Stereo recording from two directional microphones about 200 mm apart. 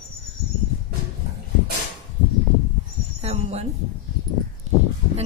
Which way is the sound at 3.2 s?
30° right (ahead or behind).